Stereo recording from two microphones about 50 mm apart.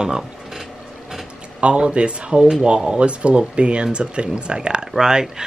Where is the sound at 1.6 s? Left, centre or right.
Right.